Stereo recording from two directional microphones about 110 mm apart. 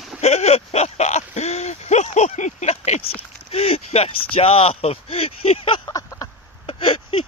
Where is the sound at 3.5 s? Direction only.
65° left (ahead or behind).